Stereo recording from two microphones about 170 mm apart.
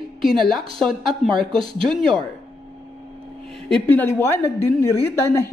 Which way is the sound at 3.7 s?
10° left (ahead or behind).